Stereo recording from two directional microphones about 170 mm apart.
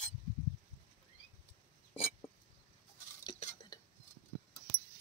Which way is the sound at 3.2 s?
25° left (ahead or behind).